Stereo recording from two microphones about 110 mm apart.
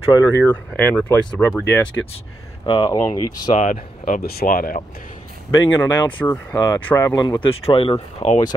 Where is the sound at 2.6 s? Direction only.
45° left (ahead or behind).